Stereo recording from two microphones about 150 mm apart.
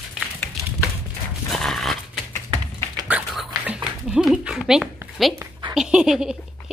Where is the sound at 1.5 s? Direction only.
Centre (ahead or behind).